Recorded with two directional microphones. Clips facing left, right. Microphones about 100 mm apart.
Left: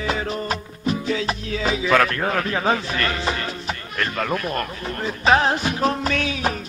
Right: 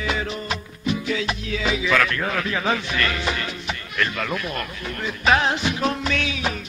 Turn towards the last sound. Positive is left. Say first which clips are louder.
# left 2 dB
turn(degrees=40)  # may be behind; listen again after turning